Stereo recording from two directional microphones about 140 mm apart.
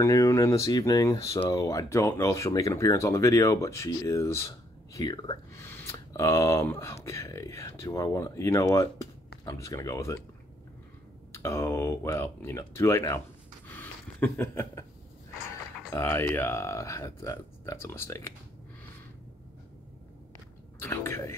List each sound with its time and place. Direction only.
0.0 s speech: 25° left (ahead or behind)
5.6 s speech: 20° left (ahead or behind)
11.3 s speech: 20° left (ahead or behind)
13.7 s a sound: 15° left (ahead or behind)
15.9 s speech: 15° left (ahead or behind)
20.8 s speech: 15° left (ahead or behind)